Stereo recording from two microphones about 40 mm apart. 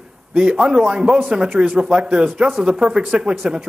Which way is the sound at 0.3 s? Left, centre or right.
Right.